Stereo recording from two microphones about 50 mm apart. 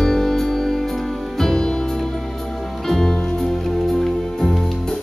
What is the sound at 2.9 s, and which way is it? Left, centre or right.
Music, centre.